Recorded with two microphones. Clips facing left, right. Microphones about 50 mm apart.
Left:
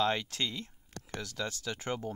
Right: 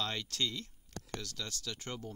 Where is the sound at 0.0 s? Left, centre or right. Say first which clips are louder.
Left 6 dB; left.